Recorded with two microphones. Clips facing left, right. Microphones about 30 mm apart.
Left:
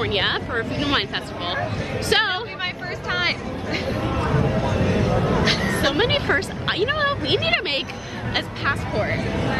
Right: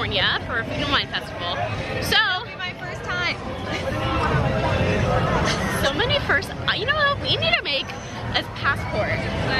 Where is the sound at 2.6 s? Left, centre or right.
Left.